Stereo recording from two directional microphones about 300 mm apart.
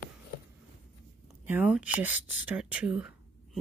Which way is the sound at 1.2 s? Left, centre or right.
Centre.